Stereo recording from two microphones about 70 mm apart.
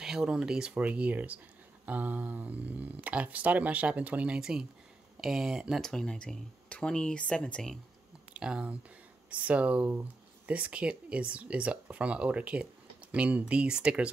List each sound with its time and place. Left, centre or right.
0.0 s speech: centre
5.8 s speech: centre
8.3 s speech: centre
9.8 s a sound: right
10.5 s speech: centre